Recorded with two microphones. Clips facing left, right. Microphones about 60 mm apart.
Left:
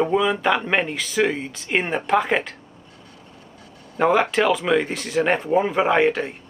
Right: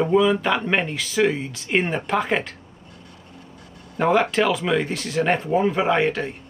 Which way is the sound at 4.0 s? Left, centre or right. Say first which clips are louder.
Left 1 dB; centre.